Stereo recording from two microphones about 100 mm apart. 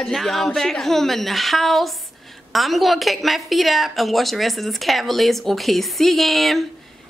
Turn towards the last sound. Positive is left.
turn(degrees=0)  # may be behind; listen again after turning